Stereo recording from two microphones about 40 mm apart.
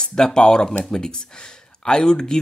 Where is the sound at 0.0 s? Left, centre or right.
Centre.